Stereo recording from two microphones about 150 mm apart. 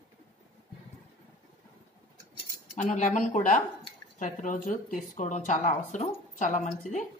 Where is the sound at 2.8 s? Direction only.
55° left (ahead or behind).